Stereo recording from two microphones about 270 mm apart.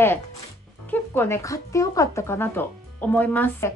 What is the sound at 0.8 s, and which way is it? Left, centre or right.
Speech, centre.